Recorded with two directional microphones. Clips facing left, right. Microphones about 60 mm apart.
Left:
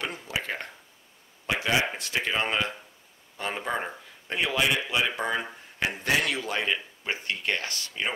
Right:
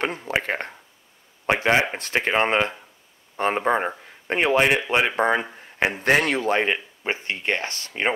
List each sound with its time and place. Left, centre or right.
0.0 s speech: right